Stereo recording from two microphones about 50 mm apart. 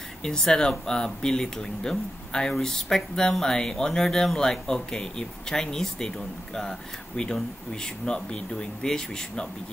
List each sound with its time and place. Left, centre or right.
0.2 s speech: centre